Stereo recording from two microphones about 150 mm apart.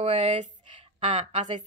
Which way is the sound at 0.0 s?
40° right (ahead or behind).